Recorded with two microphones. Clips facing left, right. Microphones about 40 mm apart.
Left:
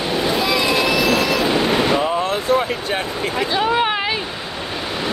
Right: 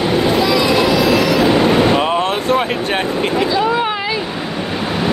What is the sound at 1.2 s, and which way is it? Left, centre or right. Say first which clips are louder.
Vehicle: right 5 dB; right.